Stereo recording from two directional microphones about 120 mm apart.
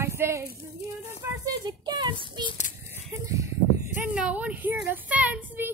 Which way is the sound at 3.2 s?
25° right (ahead or behind).